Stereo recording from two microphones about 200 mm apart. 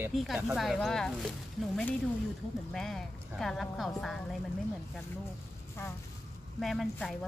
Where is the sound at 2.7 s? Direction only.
Centre (ahead or behind).